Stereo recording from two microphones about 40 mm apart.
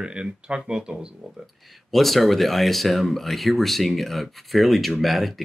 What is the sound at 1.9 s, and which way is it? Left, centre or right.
Speech, centre.